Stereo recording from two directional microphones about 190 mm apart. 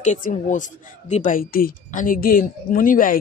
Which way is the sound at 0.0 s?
40° left (ahead or behind).